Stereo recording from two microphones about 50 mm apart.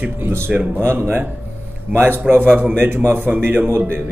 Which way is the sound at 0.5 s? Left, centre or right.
Right.